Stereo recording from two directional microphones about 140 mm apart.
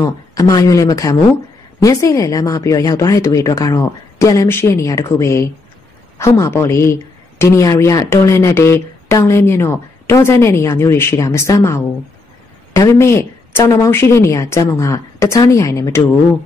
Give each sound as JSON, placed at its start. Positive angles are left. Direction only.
{"t": 0.0, "sound": "speech", "side_deg": 25}